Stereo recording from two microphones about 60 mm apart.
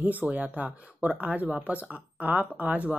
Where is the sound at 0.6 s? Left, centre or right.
Centre.